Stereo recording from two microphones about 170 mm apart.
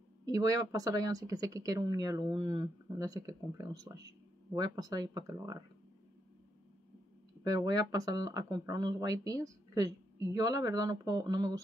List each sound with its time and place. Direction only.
0.2 s speech: 20° right (ahead or behind)
7.4 s speech: 20° right (ahead or behind)